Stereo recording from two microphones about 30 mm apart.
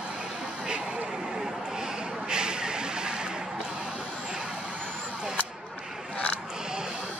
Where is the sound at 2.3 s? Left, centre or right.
Right.